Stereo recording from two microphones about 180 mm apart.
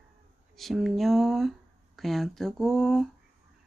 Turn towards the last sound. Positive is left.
turn(degrees=0)  # may be behind; listen again after turning